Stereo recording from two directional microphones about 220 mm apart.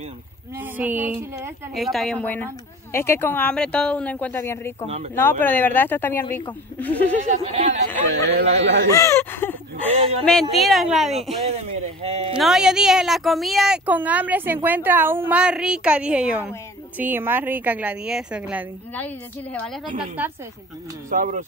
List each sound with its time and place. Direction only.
0.6 s speech: 10° right (ahead or behind)
7.2 s speech: 30° right (ahead or behind)
8.2 s a man's voice: 50° right (ahead or behind)
8.9 s speech: 10° left (ahead or behind)
9.9 s speech: 25° right (ahead or behind)
10.5 s speech: centre (ahead or behind)
11.4 s speech: 30° right (ahead or behind)
12.4 s a woman's voice: centre (ahead or behind)
20.2 s a woman's voice: 10° right (ahead or behind)
21.1 s speech: 35° right (ahead or behind)